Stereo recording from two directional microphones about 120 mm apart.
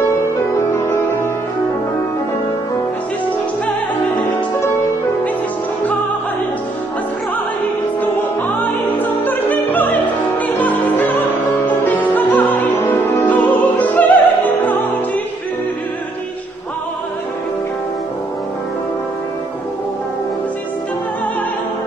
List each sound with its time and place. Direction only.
0.7 s music: 20° left (ahead or behind)
8.0 s opera: 15° left (ahead or behind)